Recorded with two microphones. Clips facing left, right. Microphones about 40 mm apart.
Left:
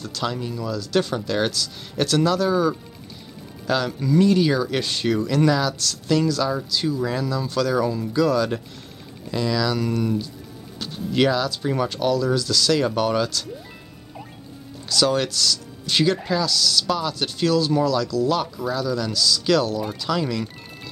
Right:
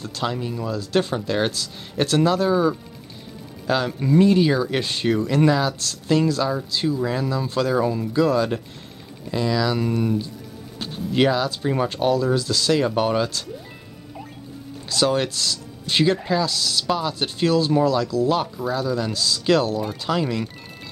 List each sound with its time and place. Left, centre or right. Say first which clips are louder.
0.0 s speech: right 1 dB; centre
0.6 s speech: even; right
14.9 s speech: even; right